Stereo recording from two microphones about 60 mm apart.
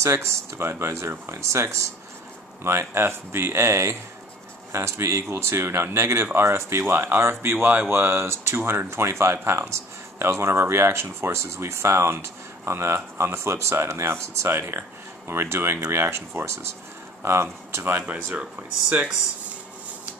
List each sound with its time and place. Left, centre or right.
0.3 s speech: right
18.0 s speech: right